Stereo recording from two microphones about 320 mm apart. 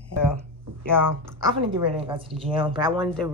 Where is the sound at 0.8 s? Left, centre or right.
Centre.